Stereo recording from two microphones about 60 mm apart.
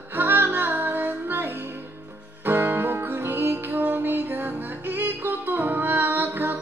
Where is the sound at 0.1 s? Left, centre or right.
Right.